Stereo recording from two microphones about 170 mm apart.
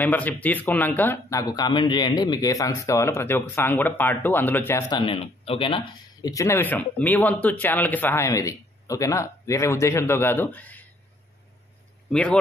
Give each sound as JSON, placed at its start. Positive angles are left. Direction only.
{"t": 0.0, "sound": "speech", "side_deg": 10}
{"t": 4.9, "sound": "speech", "side_deg": 30}
{"t": 12.1, "sound": "a man's voice", "side_deg": 5}